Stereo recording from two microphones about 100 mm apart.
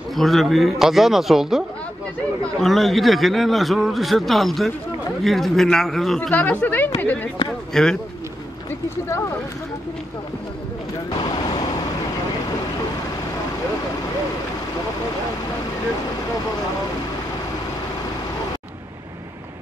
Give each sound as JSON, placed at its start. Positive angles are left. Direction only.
{"t": 0.1, "sound": "a man's voice", "side_deg": 0}
{"t": 2.6, "sound": "a man's voice", "side_deg": 0}
{"t": 6.3, "sound": "speech", "side_deg": 15}
{"t": 7.7, "sound": "speech", "side_deg": 5}
{"t": 11.1, "sound": "vehicle", "side_deg": 45}